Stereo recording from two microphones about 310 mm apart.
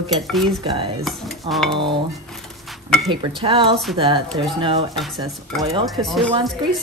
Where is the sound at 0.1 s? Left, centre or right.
Centre.